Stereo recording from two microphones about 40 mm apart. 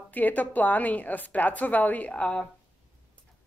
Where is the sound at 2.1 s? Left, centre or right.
Left.